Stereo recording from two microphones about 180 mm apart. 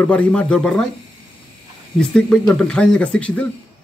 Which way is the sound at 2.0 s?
5° left (ahead or behind).